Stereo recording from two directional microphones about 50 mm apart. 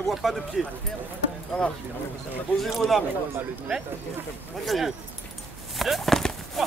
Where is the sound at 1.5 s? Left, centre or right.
Left.